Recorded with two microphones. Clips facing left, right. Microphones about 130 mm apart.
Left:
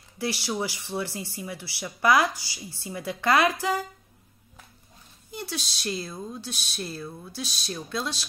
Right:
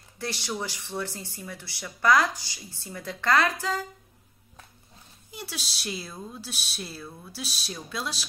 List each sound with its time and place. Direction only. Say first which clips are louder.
0.2 s speech: left 4 dB; 5° left (ahead or behind)
5.3 s speech: left 4 dB; 5° right (ahead or behind)